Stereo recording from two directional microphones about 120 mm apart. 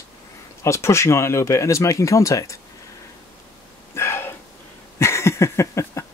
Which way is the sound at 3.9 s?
20° left (ahead or behind).